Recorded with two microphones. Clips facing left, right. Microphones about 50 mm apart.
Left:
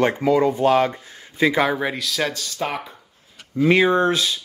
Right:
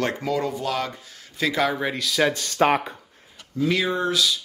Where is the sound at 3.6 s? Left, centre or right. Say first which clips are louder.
Left 7 dB; left.